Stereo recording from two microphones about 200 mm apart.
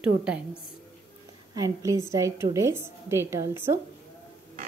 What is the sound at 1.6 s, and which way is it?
A woman's voice, 15° right (ahead or behind).